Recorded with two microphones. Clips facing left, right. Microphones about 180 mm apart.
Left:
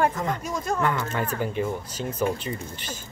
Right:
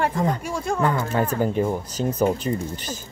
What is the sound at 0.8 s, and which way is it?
Speech, 35° right (ahead or behind).